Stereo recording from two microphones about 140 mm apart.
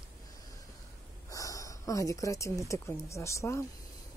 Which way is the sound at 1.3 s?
25° left (ahead or behind).